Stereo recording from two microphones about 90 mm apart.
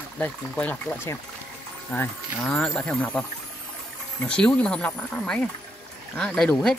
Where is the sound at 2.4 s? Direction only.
10° left (ahead or behind).